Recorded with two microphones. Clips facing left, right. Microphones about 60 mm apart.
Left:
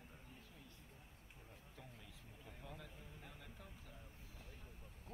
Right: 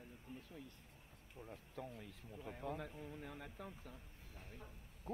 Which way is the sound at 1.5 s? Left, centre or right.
Right.